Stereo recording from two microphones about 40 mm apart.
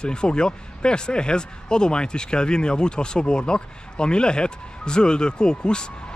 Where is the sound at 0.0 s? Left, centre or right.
Left.